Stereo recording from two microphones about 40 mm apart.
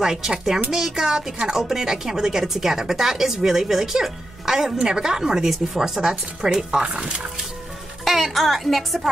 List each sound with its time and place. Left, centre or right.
0.0 s speech: centre
6.8 s speech: right
8.0 s speech: centre